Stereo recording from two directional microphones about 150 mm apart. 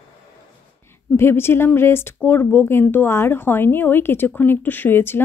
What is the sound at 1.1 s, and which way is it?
Speech, 15° left (ahead or behind).